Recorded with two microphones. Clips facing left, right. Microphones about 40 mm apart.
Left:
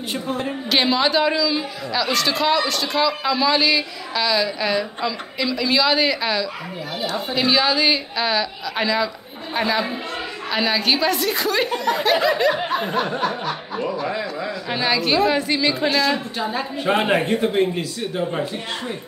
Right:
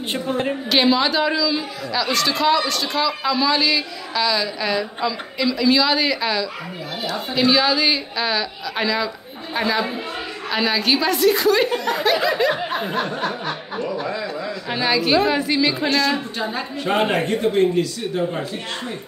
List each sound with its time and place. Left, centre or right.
0.1 s a woman's voice: right
0.7 s a man's voice: centre
14.7 s a man's voice: centre